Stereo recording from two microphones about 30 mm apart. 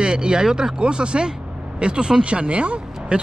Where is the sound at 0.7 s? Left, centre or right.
Right.